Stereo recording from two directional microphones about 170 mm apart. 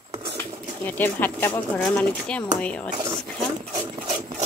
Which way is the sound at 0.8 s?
10° left (ahead or behind).